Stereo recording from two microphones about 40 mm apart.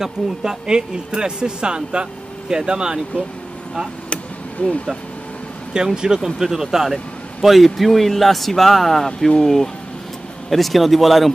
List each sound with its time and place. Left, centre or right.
0.0 s speech: centre
4.6 s speech: left
5.9 s speech: centre